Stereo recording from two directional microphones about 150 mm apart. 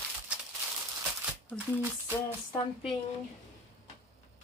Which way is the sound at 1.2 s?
10° right (ahead or behind).